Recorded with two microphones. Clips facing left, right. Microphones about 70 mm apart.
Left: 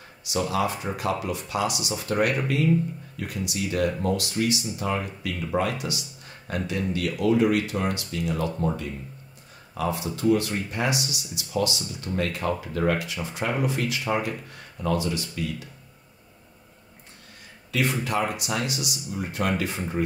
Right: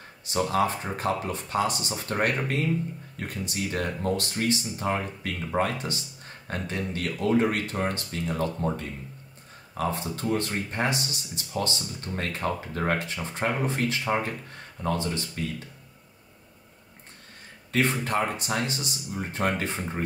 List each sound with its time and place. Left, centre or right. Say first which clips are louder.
0.2 s speech: right 1 dB; right
17.6 s speech: even; right